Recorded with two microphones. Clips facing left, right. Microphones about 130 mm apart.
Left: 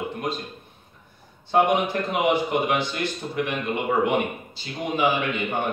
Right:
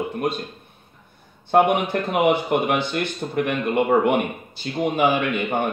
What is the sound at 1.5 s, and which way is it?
A man's voice, 55° right (ahead or behind).